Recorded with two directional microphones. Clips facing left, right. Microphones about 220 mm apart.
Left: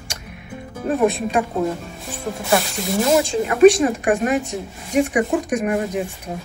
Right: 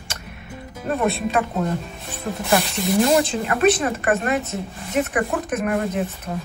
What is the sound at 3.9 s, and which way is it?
Speech, 15° left (ahead or behind).